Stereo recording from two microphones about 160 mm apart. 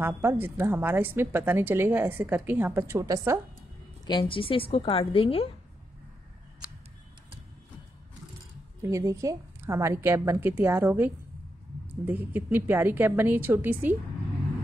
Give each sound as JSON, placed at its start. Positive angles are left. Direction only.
{"t": 0.0, "sound": "a woman's voice", "side_deg": -15}
{"t": 4.0, "sound": "a woman's voice", "side_deg": 30}
{"t": 8.8, "sound": "a woman's voice", "side_deg": -20}